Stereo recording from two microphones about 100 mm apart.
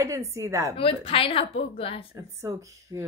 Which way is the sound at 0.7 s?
65° left (ahead or behind).